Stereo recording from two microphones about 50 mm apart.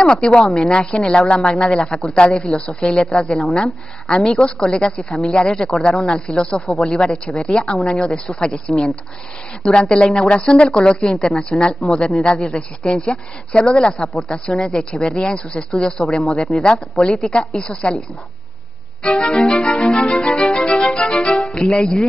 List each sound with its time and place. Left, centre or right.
0.0 s a woman's voice: centre
8.6 s speech: centre
9.7 s a woman's voice: centre
19.0 s a woman's voice: centre
20.7 s music: centre
21.0 s a woman's voice: centre
21.7 s music: centre